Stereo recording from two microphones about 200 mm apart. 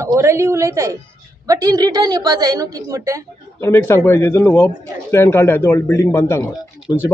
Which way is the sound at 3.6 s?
10° left (ahead or behind).